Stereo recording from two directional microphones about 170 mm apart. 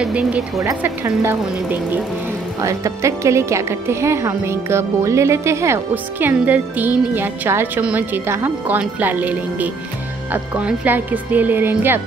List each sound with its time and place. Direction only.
0.0 s speech: 5° right (ahead or behind)
0.6 s speech: 15° right (ahead or behind)